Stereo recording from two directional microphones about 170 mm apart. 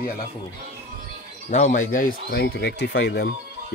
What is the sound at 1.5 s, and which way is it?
Speech, 45° left (ahead or behind).